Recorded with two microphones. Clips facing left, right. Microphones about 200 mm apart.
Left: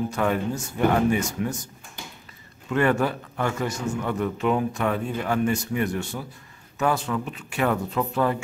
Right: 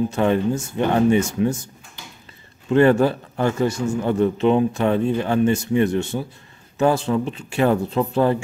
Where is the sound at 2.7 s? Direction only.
30° right (ahead or behind).